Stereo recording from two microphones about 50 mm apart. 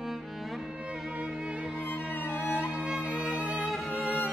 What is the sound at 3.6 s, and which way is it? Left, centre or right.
Music, centre.